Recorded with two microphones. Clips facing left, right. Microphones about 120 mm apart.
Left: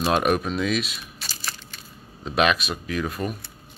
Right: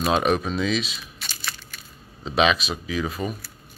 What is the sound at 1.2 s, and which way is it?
Crushing, 35° left (ahead or behind).